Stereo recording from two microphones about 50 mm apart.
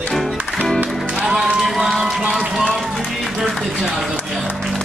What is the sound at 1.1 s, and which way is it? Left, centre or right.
Music, centre.